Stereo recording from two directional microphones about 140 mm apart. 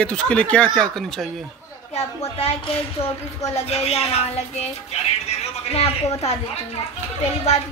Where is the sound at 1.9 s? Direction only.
45° left (ahead or behind).